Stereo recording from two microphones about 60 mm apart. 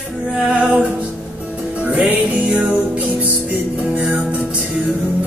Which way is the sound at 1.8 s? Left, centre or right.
Centre.